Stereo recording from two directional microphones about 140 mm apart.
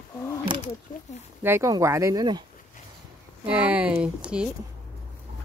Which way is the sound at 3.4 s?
10° right (ahead or behind).